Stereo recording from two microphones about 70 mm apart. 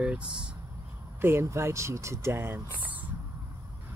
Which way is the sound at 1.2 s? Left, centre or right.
Right.